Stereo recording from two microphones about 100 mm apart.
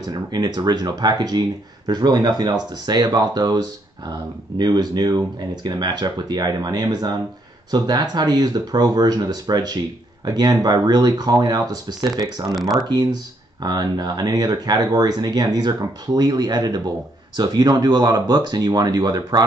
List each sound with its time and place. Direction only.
0.0 s speech: 40° right (ahead or behind)
4.6 s speech: 45° right (ahead or behind)